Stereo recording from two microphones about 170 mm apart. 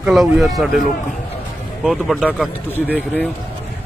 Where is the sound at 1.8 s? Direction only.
Centre (ahead or behind).